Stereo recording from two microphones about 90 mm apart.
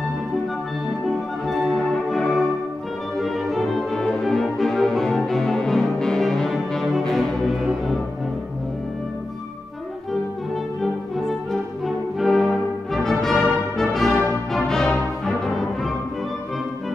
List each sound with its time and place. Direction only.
0.8 s music: centre (ahead or behind)
10.8 s music: centre (ahead or behind)